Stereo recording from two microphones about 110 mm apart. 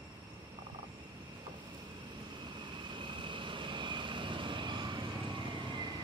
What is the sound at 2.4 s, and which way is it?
Vehicle, 45° right (ahead or behind).